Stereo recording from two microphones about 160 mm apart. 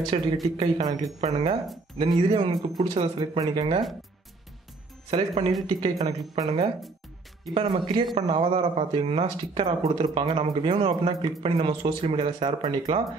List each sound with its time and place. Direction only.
0.1 s speech: 30° right (ahead or behind)
5.1 s speech: 35° right (ahead or behind)